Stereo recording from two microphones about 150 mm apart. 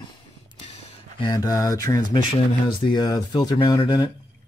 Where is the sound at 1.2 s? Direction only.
25° left (ahead or behind).